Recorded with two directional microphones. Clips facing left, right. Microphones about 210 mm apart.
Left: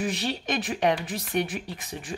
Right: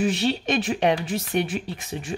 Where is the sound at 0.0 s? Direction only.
25° right (ahead or behind).